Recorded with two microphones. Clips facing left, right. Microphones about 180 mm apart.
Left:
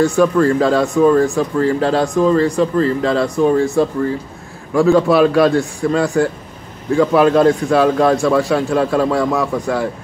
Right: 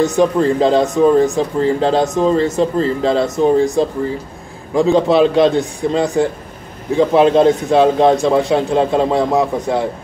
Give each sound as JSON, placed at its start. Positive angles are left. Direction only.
{"t": 0.0, "sound": "speech", "side_deg": -20}